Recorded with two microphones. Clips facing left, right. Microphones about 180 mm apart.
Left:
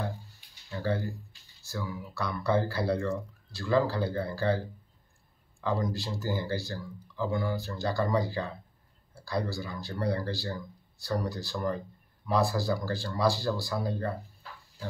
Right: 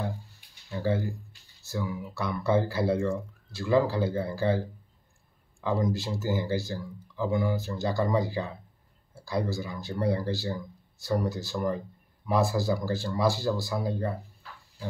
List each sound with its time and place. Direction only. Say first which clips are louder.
0.7 s speech: right 3 dB; 15° right (ahead or behind)